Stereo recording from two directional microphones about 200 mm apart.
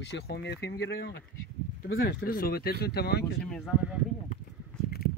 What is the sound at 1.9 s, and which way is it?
Speech, 45° left (ahead or behind).